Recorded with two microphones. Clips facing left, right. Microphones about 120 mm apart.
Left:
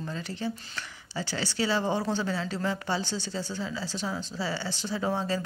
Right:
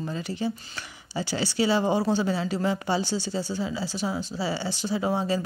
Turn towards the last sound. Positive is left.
turn(degrees=-15)  # may be behind; listen again after turning